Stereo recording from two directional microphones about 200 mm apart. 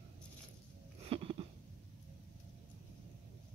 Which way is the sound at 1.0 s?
30° right (ahead or behind).